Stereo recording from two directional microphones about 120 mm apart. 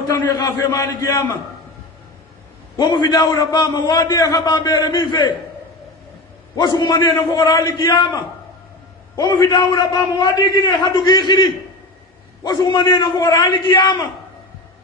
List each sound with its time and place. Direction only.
0.1 s a man's voice: 30° left (ahead or behind)
2.8 s a man's voice: 35° left (ahead or behind)
6.8 s a man's voice: 35° left (ahead or behind)
12.4 s a man's voice: 35° left (ahead or behind)